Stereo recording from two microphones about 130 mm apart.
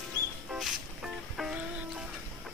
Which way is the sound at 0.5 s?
5° right (ahead or behind).